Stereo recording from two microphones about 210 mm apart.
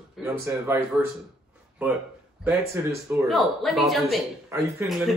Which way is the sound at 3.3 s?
Centre (ahead or behind).